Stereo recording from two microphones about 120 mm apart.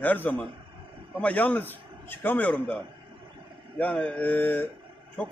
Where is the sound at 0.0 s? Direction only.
15° left (ahead or behind).